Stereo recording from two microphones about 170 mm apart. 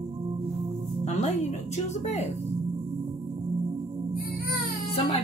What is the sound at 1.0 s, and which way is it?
Music, 40° left (ahead or behind).